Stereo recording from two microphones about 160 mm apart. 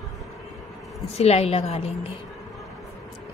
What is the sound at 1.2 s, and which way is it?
Speech, 40° left (ahead or behind).